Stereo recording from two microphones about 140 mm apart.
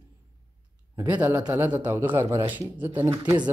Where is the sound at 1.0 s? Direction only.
10° right (ahead or behind).